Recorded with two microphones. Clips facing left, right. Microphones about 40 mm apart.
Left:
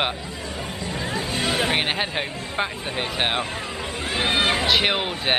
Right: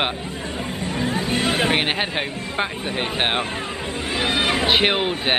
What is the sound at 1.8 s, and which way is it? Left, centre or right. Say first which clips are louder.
Speech: right 2 dB; centre.